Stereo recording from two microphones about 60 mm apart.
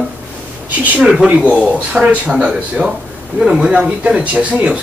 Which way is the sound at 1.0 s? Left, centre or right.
Centre.